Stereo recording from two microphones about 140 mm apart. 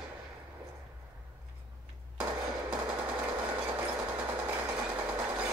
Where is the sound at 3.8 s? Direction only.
10° right (ahead or behind).